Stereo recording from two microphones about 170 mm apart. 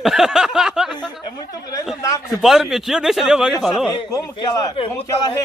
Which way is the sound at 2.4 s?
Centre (ahead or behind).